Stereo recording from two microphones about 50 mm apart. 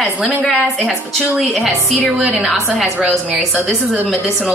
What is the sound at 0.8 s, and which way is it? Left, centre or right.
A woman's voice, centre.